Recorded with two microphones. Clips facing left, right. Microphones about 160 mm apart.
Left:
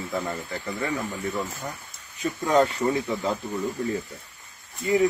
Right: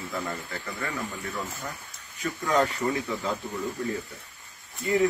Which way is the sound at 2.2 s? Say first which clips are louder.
Left 4 dB; 25° left (ahead or behind).